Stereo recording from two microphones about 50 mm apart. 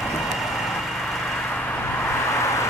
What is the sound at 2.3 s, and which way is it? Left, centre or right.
Vehicle, left.